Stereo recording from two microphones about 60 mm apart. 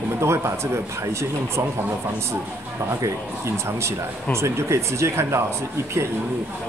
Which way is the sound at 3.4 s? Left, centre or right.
Right.